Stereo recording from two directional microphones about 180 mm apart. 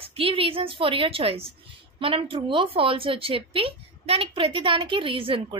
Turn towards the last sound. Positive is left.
turn(degrees=-30)  # may be behind; listen again after turning